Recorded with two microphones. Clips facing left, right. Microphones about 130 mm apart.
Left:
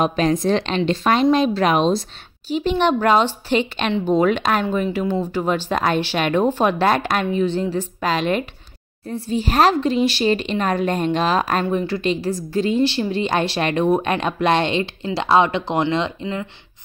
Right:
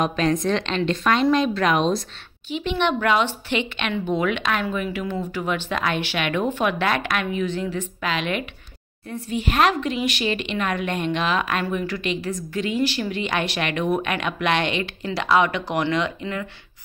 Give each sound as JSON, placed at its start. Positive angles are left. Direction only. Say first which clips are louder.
{"t": 0.0, "sound": "speech", "louder": "left 3 dB", "side_deg": 35}